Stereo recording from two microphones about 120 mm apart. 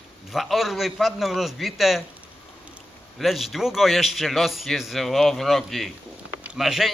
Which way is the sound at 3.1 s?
Centre (ahead or behind).